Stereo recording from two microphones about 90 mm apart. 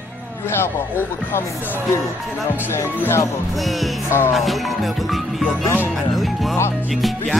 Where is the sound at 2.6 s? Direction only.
25° left (ahead or behind).